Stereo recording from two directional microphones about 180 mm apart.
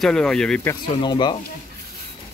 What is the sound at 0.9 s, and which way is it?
Speech, 25° left (ahead or behind).